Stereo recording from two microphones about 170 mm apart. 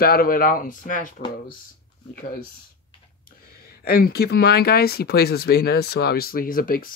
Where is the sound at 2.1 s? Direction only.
55° left (ahead or behind).